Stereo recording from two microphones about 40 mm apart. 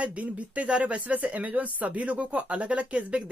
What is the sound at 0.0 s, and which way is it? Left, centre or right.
Speech, right.